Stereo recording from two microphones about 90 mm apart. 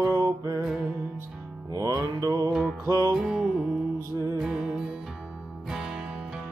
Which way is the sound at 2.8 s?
40° right (ahead or behind).